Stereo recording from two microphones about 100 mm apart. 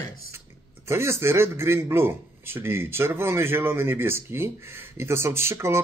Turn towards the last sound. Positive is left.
turn(degrees=-25)  # may be behind; listen again after turning